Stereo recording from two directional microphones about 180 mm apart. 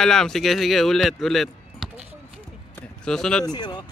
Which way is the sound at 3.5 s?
25° left (ahead or behind).